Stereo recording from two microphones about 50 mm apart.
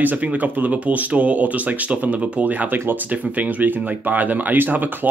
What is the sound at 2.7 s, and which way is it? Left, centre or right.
Speech, right.